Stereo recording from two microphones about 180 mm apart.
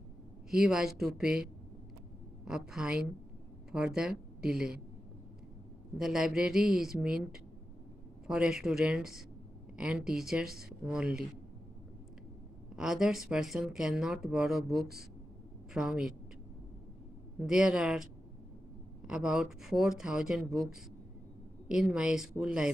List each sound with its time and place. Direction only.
0.5 s speech: centre (ahead or behind)
5.9 s speech: 5° right (ahead or behind)
12.7 s speech: 5° right (ahead or behind)
17.4 s speech: 5° right (ahead or behind)
19.0 s speech: 5° right (ahead or behind)